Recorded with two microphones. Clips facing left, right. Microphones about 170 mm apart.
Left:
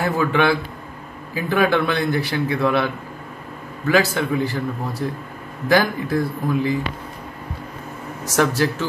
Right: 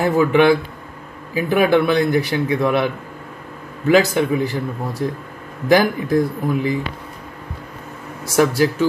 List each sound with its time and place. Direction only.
0.0 s a man's voice: 15° right (ahead or behind)
8.4 s a man's voice: 10° right (ahead or behind)